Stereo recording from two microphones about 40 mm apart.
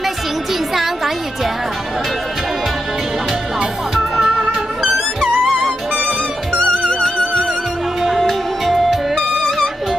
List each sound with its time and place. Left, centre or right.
0.7 s a sound: centre
3.9 s music: centre
6.7 s music: left
7.0 s music: centre